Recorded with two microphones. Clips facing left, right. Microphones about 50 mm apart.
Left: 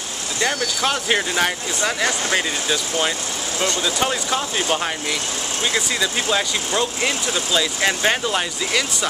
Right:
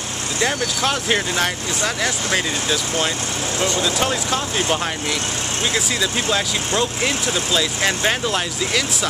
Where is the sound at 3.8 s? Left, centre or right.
Centre.